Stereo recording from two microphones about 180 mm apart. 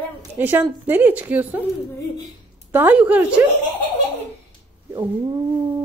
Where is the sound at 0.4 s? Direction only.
10° right (ahead or behind).